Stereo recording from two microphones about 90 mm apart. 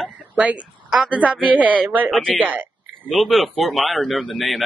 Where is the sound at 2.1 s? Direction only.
5° left (ahead or behind).